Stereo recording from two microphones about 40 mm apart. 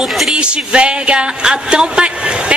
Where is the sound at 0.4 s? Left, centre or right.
Right.